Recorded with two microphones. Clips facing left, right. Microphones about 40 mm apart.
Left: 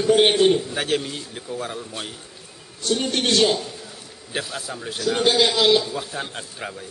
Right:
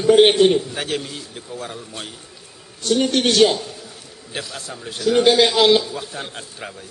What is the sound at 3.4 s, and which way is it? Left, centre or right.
Speech, right.